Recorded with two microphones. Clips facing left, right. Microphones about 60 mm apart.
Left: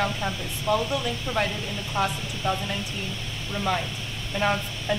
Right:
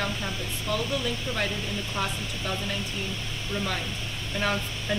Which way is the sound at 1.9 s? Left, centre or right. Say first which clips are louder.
Left 8 dB; left.